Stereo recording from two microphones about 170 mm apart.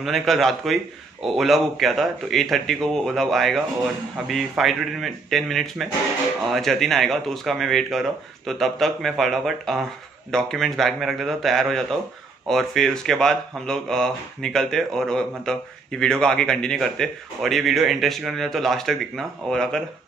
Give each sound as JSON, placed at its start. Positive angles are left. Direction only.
{"t": 0.0, "sound": "speech", "side_deg": 0}